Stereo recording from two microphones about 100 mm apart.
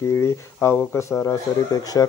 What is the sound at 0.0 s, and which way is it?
Speech, 30° left (ahead or behind).